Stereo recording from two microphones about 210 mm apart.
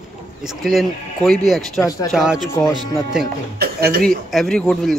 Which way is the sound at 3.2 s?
50° right (ahead or behind).